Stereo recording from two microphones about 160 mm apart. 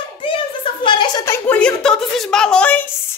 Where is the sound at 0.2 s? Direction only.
35° left (ahead or behind); by 2.9 s 10° left (ahead or behind).